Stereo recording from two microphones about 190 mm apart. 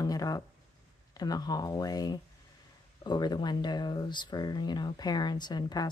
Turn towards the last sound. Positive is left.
turn(degrees=20)  # may be behind; listen again after turning